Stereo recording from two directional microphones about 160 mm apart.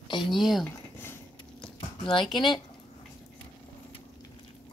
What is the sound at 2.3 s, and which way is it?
Speech, 30° left (ahead or behind).